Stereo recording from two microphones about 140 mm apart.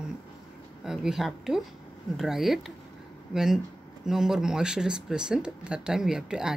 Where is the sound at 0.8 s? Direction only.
5° right (ahead or behind).